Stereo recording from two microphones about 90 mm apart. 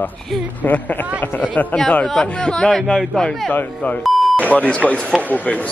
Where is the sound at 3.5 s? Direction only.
20° left (ahead or behind).